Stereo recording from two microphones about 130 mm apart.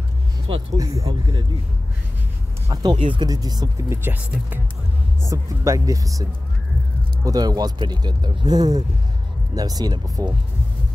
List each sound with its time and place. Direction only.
0.7 s speech: 25° right (ahead or behind)
2.7 s speech: 35° right (ahead or behind)
7.2 s speech: 30° right (ahead or behind)